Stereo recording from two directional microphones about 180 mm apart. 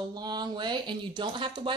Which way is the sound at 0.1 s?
25° right (ahead or behind).